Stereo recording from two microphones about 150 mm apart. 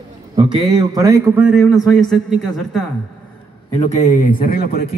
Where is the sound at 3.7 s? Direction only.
50° left (ahead or behind); by 4.9 s 85° left.